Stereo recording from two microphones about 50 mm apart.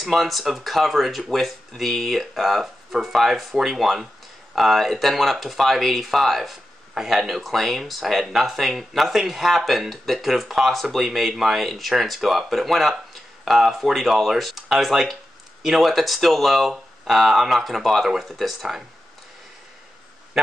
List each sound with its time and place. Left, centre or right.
0.0 s speech: centre